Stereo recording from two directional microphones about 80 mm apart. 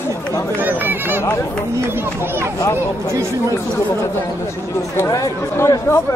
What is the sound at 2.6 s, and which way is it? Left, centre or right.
Speech, left.